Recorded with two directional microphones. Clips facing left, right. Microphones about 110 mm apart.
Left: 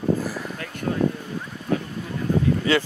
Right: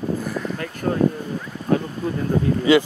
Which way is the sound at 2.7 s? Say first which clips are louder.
Right 8 dB; 15° right (ahead or behind).